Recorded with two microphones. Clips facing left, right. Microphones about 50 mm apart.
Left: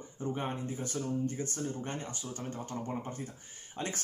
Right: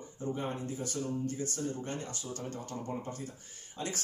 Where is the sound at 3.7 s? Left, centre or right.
Left.